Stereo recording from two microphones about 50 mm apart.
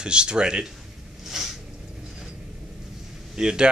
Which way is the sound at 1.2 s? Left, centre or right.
Centre.